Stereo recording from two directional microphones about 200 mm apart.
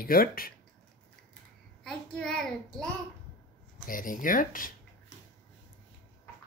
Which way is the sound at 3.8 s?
45° left (ahead or behind).